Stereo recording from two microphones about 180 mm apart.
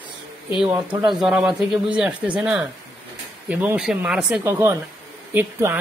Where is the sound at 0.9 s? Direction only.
25° right (ahead or behind).